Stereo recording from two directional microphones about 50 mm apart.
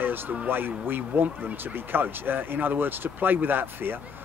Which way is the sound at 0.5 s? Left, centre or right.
Right.